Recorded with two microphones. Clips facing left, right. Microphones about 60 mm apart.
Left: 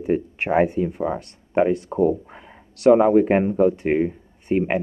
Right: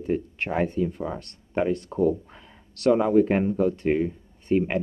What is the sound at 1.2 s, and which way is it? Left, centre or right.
Speech, centre.